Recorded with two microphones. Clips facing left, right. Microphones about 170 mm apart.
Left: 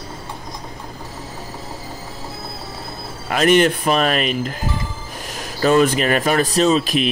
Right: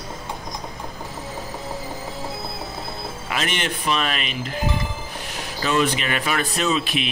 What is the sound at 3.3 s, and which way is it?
Speech, 45° left (ahead or behind).